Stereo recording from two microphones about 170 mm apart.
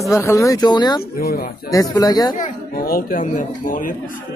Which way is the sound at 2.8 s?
55° left (ahead or behind).